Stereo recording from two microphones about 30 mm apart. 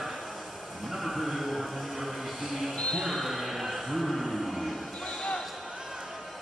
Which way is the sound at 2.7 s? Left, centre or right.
Left.